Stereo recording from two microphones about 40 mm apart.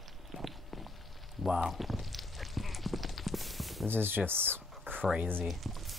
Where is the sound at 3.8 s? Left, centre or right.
Right.